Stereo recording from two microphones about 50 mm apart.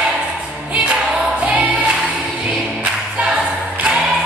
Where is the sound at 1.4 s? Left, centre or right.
Right.